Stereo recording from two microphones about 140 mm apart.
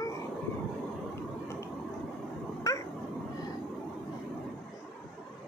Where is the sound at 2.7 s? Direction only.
20° left (ahead or behind).